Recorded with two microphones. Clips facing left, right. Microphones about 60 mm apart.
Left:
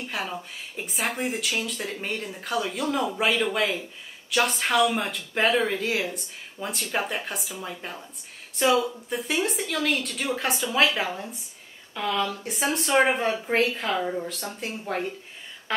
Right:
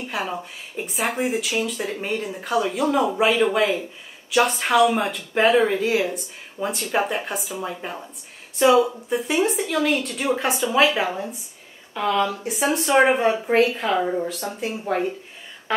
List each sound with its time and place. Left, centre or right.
0.0 s speech: centre